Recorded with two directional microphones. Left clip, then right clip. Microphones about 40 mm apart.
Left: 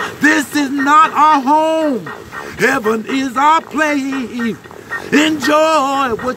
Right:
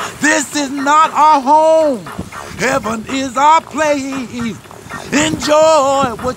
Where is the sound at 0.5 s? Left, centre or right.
Left.